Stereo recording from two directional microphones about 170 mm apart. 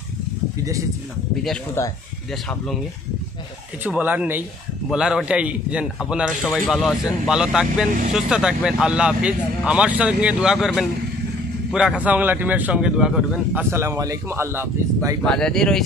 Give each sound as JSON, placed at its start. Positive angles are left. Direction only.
{"t": 1.8, "sound": "speech", "side_deg": 15}
{"t": 3.8, "sound": "a man's voice", "side_deg": -10}
{"t": 6.4, "sound": "a man's voice", "side_deg": 10}
{"t": 13.7, "sound": "speech", "side_deg": -15}
{"t": 15.2, "sound": "a man's voice", "side_deg": 5}